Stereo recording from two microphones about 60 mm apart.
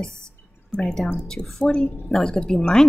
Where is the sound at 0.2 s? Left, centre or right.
Centre.